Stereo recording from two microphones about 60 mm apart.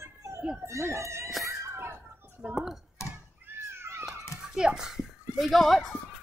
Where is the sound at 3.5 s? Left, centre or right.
Right.